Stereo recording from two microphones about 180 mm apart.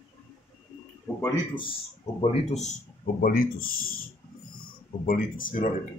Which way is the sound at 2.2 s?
35° left (ahead or behind).